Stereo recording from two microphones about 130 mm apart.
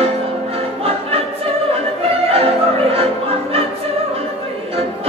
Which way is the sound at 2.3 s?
50° right (ahead or behind).